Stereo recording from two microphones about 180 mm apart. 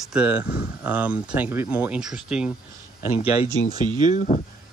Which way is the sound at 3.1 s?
30° left (ahead or behind).